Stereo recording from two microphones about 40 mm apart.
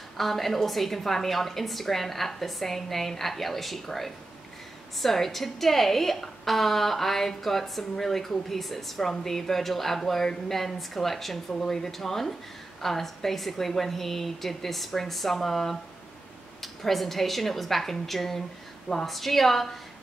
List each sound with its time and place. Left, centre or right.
0.2 s a woman's voice: centre